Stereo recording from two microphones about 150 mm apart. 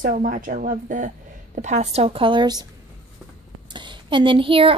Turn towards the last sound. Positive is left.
turn(degrees=-35)  # may be behind; listen again after turning